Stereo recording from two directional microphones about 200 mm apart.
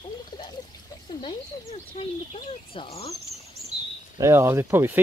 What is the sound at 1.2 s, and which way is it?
Speech, 25° left (ahead or behind).